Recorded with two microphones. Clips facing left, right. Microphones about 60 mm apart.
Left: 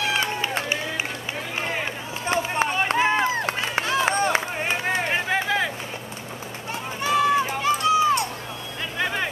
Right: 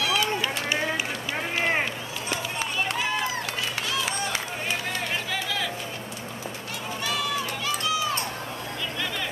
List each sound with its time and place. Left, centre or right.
0.0 s run: left
2.2 s run: left
7.0 s run: left
8.9 s vehicle: left